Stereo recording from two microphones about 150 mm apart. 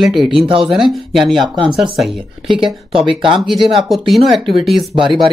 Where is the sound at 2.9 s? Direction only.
35° right (ahead or behind).